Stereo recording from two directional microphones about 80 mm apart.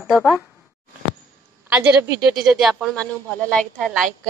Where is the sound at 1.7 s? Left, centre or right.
Centre.